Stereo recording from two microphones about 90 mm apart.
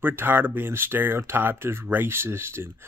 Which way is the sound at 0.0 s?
25° right (ahead or behind).